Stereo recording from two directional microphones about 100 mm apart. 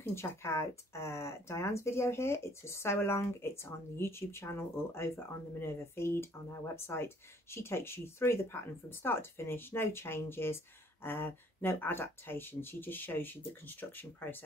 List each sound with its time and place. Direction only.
0.0 s speech: 25° left (ahead or behind)